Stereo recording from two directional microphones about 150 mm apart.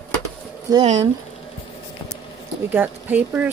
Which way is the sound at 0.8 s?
45° right (ahead or behind).